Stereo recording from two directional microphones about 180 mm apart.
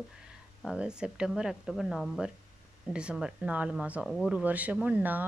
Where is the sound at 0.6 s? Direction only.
5° right (ahead or behind).